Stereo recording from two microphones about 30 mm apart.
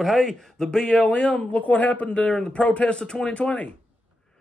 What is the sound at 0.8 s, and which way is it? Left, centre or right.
Speech, left.